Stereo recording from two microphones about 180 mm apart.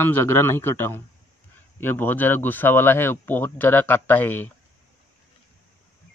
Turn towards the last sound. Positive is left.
turn(degrees=10)  # may be behind; listen again after turning